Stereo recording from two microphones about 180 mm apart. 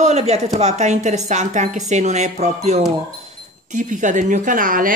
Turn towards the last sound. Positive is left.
turn(degrees=-50)  # may be behind; listen again after turning